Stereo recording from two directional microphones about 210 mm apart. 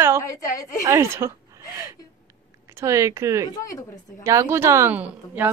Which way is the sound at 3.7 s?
15° left (ahead or behind).